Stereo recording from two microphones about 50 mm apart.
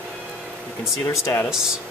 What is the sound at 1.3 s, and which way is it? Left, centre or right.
Speech, left.